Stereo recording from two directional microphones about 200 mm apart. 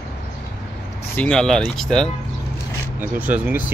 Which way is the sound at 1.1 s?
5° left (ahead or behind).